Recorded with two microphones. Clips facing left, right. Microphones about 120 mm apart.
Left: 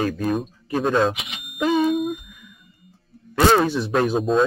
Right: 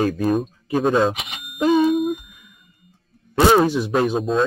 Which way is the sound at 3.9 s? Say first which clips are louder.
Even; centre (ahead or behind).